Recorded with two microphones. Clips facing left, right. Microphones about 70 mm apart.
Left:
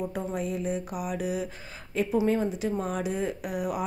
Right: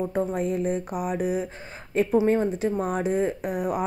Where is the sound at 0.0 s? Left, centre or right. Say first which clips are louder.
Right 5 dB; right.